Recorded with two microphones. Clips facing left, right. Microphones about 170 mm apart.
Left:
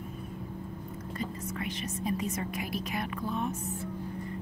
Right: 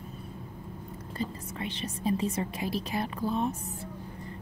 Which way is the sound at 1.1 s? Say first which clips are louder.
Right 1 dB; 30° right (ahead or behind).